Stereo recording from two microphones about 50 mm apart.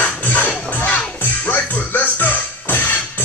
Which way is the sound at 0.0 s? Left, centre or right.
Left.